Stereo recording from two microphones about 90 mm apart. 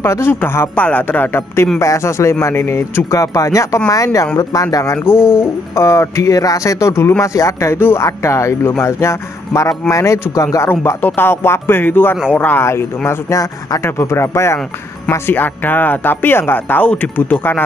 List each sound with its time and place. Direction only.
0.0 s speech: 30° left (ahead or behind)
5.1 s speech: 10° right (ahead or behind)
5.8 s speech: 35° left (ahead or behind)
11.0 s speech: 20° left (ahead or behind)